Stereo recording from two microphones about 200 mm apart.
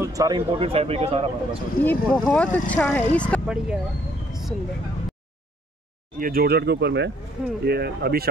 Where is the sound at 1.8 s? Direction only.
5° left (ahead or behind).